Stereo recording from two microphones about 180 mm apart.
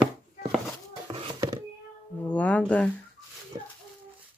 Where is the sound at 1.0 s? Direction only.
25° right (ahead or behind).